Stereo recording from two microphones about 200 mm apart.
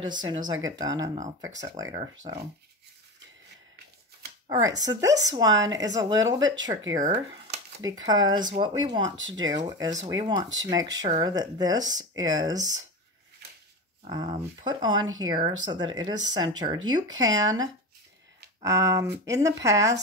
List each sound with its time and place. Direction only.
0.0 s a woman's voice: 25° right (ahead or behind)
4.5 s a woman's voice: 20° right (ahead or behind)
14.0 s a woman's voice: 20° right (ahead or behind)